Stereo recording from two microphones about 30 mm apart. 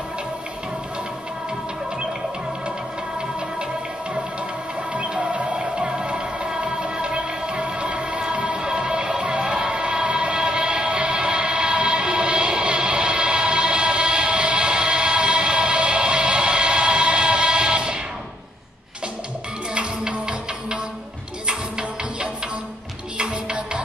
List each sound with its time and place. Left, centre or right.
5.1 s music: right
19.7 s music: right